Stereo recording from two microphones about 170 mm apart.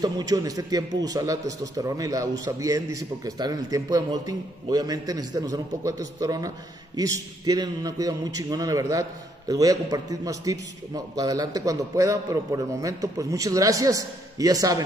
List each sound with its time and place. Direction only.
0.0 s a man's voice: 20° right (ahead or behind)